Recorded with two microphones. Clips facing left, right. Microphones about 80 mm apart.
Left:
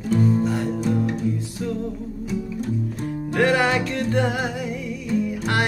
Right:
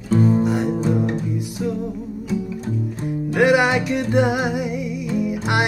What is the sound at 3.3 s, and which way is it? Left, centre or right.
Music, centre.